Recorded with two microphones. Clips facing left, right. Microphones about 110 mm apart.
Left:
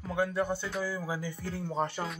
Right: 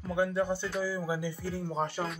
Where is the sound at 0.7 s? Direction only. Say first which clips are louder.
Right 2 dB; 5° right (ahead or behind).